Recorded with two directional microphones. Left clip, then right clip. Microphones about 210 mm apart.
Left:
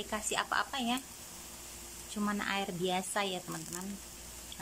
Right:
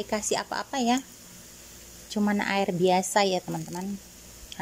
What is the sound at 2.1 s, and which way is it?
Speech, 30° right (ahead or behind).